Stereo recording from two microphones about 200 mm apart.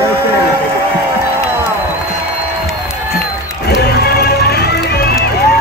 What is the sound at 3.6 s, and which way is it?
Music, 55° left (ahead or behind).